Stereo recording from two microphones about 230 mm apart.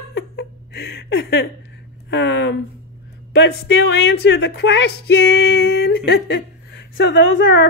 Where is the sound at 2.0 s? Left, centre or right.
Left.